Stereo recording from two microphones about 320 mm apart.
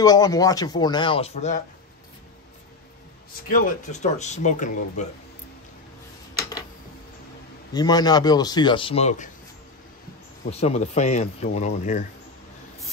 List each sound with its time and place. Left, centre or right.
0.0 s a man's voice: centre
3.4 s speech: left
7.7 s a man's voice: centre
10.5 s speech: centre